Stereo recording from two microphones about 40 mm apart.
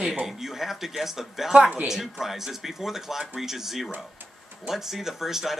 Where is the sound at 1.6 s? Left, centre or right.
Right.